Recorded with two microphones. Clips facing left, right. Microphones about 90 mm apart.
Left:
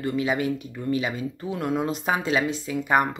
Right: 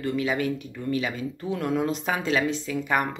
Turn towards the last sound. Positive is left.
turn(degrees=15)  # may be behind; listen again after turning